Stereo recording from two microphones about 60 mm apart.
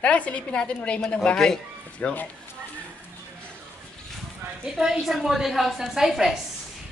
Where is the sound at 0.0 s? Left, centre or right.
Left.